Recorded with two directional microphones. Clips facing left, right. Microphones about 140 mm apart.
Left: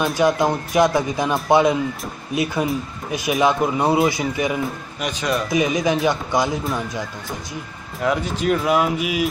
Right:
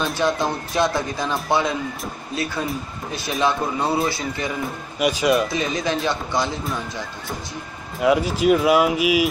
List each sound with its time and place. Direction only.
0.2 s speech: 15° left (ahead or behind)
4.6 s speech: 5° right (ahead or behind)
5.5 s speech: 15° left (ahead or behind)
8.0 s speech: 5° right (ahead or behind)